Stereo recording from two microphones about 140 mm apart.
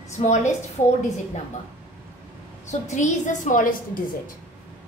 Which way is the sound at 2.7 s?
60° left (ahead or behind).